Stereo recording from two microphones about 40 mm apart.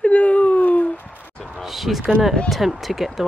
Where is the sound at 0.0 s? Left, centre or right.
Left.